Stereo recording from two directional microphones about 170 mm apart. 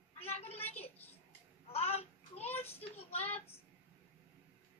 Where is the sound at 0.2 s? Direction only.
35° left (ahead or behind).